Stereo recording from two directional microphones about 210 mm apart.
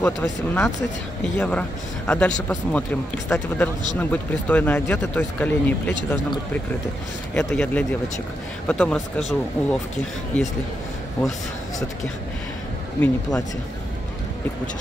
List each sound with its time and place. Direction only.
0.0 s a man's voice: 10° left (ahead or behind)
7.3 s speech: 5° left (ahead or behind)
13.0 s a man's voice: 15° left (ahead or behind)